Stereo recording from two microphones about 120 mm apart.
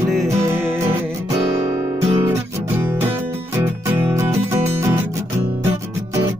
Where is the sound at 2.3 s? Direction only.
20° right (ahead or behind).